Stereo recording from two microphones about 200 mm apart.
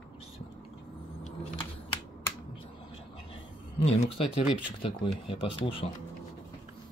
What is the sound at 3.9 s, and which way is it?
Speech, 30° left (ahead or behind).